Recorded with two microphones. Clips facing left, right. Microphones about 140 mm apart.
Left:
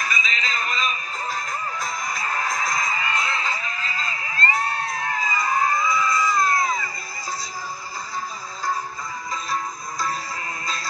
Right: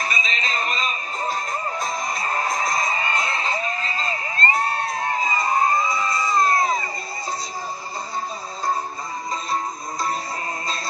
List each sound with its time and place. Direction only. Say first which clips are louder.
0.0 s music: right 1 dB; 30° right (ahead or behind)
9.3 s music: right 2 dB; 30° right (ahead or behind)